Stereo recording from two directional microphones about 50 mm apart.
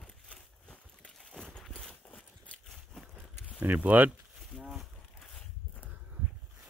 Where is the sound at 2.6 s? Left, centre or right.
Centre.